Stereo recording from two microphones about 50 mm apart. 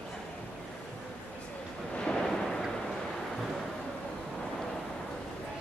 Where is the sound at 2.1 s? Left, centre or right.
Centre.